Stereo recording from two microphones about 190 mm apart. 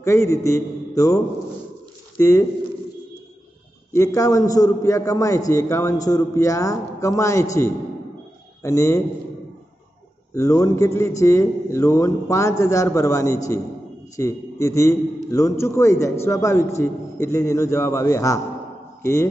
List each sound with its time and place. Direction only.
0.0 s a man's voice: 15° left (ahead or behind)
3.9 s a man's voice: 15° left (ahead or behind)
8.6 s a man's voice: 15° left (ahead or behind)
10.3 s a man's voice: 15° left (ahead or behind)